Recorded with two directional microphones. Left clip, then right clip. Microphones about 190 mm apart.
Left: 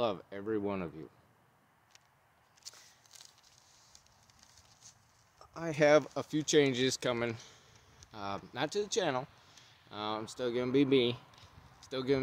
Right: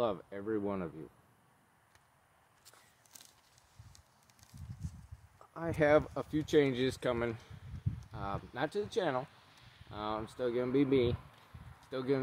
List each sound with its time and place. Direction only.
0.0 s speech: 20° left (ahead or behind)
2.6 s a sound: 15° left (ahead or behind)
5.4 s speech: 15° left (ahead or behind)